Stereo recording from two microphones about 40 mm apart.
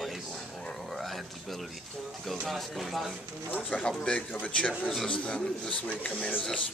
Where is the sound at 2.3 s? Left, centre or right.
Centre.